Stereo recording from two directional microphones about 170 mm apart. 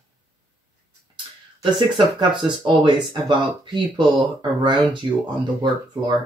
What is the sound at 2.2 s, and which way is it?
Speech, 25° right (ahead or behind).